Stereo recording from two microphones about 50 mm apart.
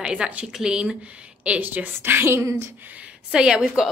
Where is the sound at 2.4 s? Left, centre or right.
Right.